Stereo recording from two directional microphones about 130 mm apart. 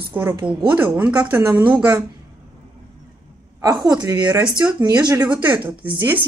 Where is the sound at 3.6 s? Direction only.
25° right (ahead or behind).